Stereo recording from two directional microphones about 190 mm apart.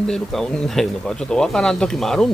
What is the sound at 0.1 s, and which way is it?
Speech, centre (ahead or behind).